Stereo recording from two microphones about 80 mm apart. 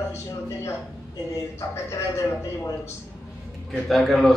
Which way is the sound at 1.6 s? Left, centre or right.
Left.